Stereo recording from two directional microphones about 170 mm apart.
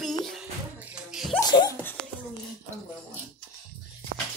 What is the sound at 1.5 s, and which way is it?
Laughter, 25° left (ahead or behind).